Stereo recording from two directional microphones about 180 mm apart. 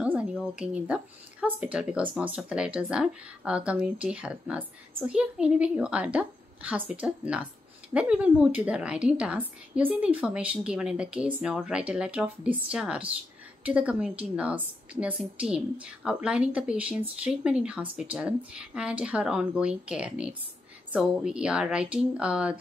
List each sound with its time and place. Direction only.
0.0 s a woman's voice: 5° right (ahead or behind)